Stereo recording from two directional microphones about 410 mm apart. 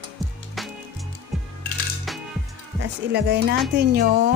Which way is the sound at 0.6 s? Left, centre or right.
Centre.